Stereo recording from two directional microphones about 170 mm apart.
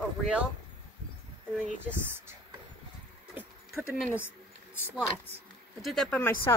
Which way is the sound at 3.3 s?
5° right (ahead or behind).